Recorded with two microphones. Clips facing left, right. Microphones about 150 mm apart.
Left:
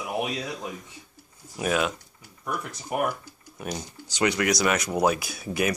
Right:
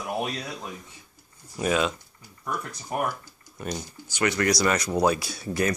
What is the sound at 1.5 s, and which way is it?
Speech, 5° left (ahead or behind).